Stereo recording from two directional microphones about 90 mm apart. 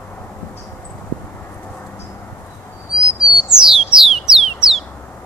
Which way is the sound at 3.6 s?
5° right (ahead or behind).